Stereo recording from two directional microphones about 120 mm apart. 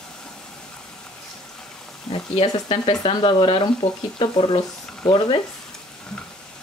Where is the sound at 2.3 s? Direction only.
50° left (ahead or behind).